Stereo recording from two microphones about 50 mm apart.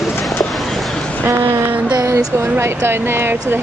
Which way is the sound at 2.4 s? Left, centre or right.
Right.